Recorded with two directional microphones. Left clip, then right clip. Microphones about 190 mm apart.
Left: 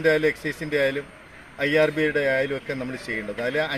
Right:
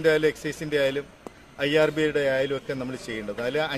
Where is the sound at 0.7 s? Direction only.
25° right (ahead or behind).